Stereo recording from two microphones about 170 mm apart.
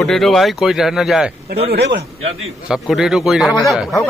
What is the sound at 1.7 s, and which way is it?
Speech, 75° right (ahead or behind).